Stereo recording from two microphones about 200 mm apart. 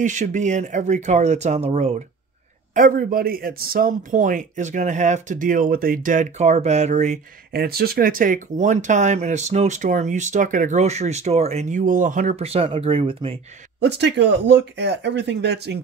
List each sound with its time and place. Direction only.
0.0 s speech: 40° right (ahead or behind)
2.7 s speech: 45° right (ahead or behind)
7.5 s speech: 50° right (ahead or behind); by 13.4 s 25° right (ahead or behind)
13.7 s speech: 60° right (ahead or behind)